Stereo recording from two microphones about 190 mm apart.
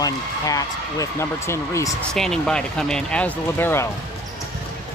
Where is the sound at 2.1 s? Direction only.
5° left (ahead or behind).